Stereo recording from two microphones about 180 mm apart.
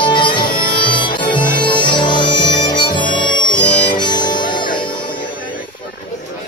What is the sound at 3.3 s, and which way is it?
Harmonica, 25° left (ahead or behind).